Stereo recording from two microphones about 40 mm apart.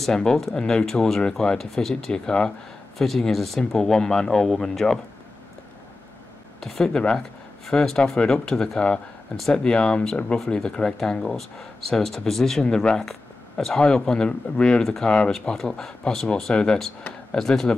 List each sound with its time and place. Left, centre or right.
0.0 s speech: centre
3.0 s speech: centre
6.6 s speech: centre
13.0 s speech: centre
14.8 s speech: centre
15.0 s speech: left
16.1 s speech: centre